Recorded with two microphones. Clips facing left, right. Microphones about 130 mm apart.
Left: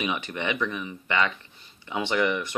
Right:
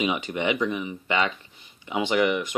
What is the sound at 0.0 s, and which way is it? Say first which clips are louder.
Speech: right 4 dB; 20° right (ahead or behind).